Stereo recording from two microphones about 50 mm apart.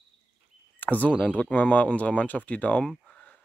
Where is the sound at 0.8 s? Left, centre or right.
Left.